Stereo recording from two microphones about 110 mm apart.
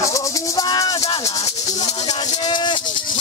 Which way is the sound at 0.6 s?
40° left (ahead or behind).